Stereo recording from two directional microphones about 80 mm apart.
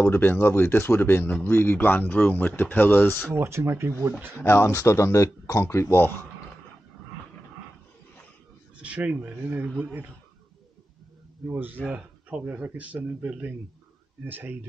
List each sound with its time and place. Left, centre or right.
0.0 s speech: left
3.3 s speech: right
4.4 s speech: left
8.8 s speech: centre
11.5 s speech: right